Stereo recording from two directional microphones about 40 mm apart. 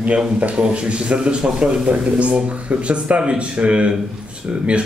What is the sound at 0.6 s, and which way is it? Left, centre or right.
Speech, right.